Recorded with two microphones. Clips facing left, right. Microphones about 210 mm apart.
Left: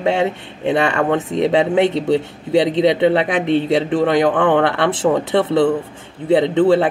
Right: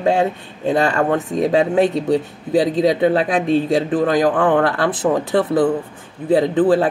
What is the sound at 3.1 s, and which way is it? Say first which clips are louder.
Speech: even; 65° left (ahead or behind).